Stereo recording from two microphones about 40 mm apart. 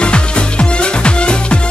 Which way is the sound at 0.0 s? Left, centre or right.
Left.